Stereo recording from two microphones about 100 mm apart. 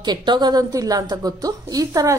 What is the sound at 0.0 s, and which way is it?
A woman's voice, 45° right (ahead or behind).